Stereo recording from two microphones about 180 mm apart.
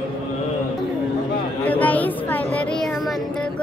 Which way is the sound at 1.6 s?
10° left (ahead or behind).